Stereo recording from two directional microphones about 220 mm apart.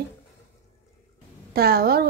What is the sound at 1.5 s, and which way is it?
Speech, 45° right (ahead or behind).